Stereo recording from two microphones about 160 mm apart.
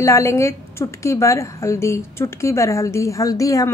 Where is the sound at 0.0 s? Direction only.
20° left (ahead or behind).